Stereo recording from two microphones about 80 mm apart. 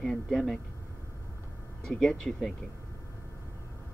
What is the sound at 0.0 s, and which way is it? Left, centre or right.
Speech, centre.